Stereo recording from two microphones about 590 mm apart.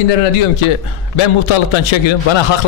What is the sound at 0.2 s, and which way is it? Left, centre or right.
A man's voice, left.